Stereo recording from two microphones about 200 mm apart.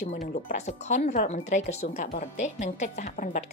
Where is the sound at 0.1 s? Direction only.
35° left (ahead or behind).